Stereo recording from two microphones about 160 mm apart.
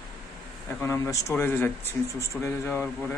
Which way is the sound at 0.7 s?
15° left (ahead or behind).